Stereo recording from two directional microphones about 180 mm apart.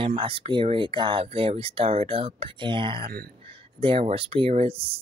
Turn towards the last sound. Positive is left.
turn(degrees=-35)  # may be behind; listen again after turning